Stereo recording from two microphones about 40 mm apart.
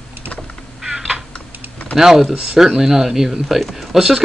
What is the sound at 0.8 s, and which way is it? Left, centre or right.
Typing, centre.